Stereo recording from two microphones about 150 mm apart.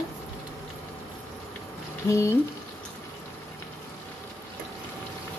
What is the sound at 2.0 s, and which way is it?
Speech, 20° left (ahead or behind).